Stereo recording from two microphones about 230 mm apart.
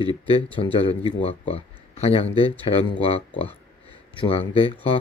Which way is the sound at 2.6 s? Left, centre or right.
Left.